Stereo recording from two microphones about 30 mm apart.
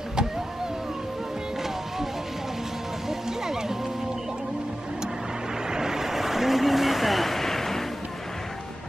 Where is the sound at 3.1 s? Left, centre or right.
Centre.